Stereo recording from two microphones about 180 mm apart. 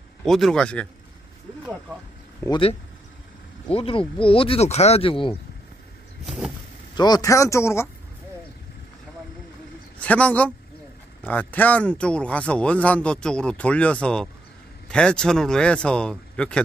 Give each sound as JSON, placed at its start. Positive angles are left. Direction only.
{"t": 0.2, "sound": "speech", "side_deg": 0}
{"t": 2.4, "sound": "a man's voice", "side_deg": 15}
{"t": 3.7, "sound": "speech", "side_deg": 30}
{"t": 6.2, "sound": "speech", "side_deg": 0}
{"t": 7.0, "sound": "a man's voice", "side_deg": 20}
{"t": 9.9, "sound": "a man's voice", "side_deg": 10}